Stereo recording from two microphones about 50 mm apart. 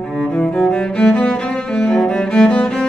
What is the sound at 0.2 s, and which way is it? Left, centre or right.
Cello, centre.